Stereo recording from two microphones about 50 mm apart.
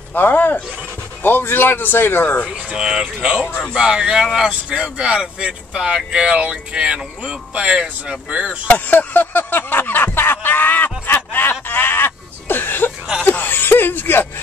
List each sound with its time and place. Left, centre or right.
0.1 s speech: left
2.4 s speech: centre
8.6 s a sound: left